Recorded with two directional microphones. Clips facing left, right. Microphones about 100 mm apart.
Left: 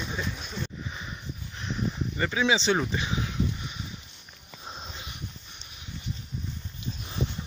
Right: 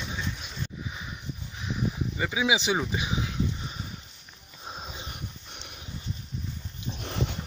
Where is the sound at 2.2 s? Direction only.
10° right (ahead or behind).